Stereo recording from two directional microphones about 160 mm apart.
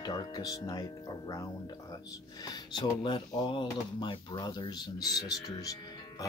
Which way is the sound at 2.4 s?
30° left (ahead or behind).